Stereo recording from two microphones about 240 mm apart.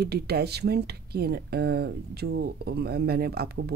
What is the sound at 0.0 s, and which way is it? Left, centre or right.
Speech, right.